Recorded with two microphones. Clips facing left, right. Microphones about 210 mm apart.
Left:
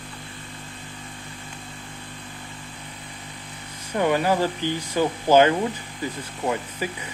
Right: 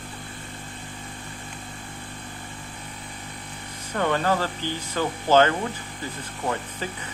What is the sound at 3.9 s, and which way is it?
Speech, 10° left (ahead or behind).